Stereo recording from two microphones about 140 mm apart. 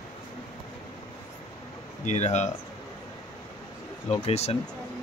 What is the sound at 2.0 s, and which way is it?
Speech, 55° left (ahead or behind).